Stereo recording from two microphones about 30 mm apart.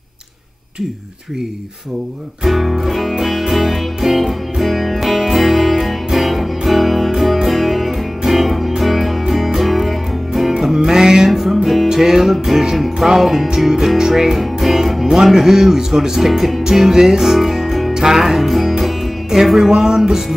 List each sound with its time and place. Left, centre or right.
2.4 s music: centre
10.7 s music: centre
11.2 s music: centre
13.6 s speech: centre
14.4 s music: centre
15.3 s speech: centre
16.3 s music: centre
16.6 s music: centre
17.2 s music: centre
18.3 s music: centre